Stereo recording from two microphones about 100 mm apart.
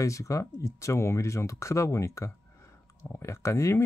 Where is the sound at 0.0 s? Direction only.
30° left (ahead or behind).